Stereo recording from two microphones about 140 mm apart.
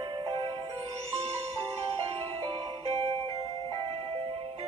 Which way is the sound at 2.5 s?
35° right (ahead or behind).